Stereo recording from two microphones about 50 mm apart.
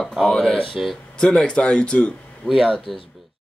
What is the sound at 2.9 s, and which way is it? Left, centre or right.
Speech, centre.